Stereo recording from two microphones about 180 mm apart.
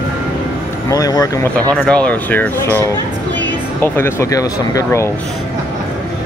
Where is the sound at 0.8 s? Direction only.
20° left (ahead or behind).